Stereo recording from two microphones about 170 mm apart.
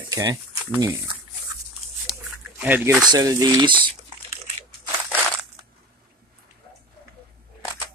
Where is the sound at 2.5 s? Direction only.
10° right (ahead or behind).